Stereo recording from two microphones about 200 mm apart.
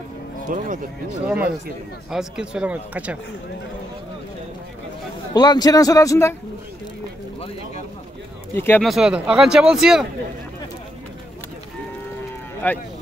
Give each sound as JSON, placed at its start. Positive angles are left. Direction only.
{"t": 0.5, "sound": "speech", "side_deg": -40}
{"t": 1.2, "sound": "speech", "side_deg": -5}
{"t": 5.3, "sound": "a man's voice", "side_deg": 20}
{"t": 8.5, "sound": "a man's voice", "side_deg": 10}
{"t": 8.8, "sound": "speech", "side_deg": -5}
{"t": 12.6, "sound": "a man's voice", "side_deg": 10}